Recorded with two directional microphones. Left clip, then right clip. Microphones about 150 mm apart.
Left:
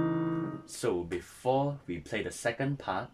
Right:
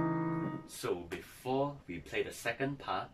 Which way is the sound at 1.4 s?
45° left (ahead or behind).